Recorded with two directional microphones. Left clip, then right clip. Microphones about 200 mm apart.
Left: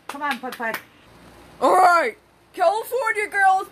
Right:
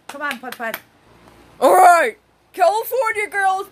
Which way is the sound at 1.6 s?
40° right (ahead or behind).